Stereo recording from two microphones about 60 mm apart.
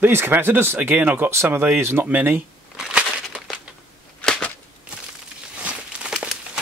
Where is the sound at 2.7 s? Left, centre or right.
Centre.